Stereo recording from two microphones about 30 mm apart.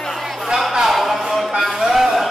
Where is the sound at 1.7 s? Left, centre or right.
Centre.